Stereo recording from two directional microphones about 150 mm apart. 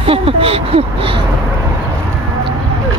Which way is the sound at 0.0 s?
40° right (ahead or behind).